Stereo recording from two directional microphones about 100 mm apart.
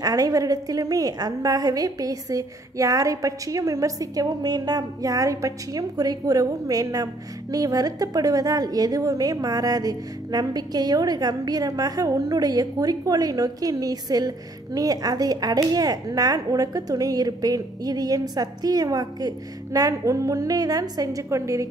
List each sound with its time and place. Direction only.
0.0 s a woman's voice: 35° right (ahead or behind)